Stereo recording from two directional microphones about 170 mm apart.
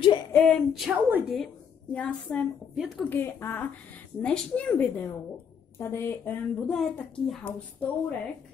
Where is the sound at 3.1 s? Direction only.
10° left (ahead or behind).